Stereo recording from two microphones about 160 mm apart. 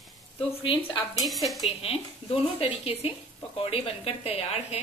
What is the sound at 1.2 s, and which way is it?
Speech, centre (ahead or behind).